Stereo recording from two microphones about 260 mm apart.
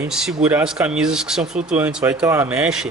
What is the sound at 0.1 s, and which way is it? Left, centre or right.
Speech, centre.